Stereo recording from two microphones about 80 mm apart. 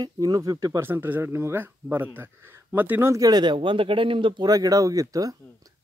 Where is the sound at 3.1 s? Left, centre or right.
Right.